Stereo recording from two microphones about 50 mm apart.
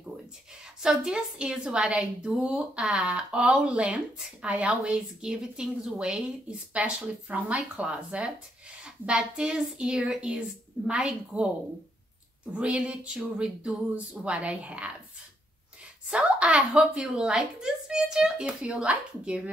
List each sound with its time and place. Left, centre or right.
0.8 s speech: centre
12.5 s speech: right
16.1 s speech: right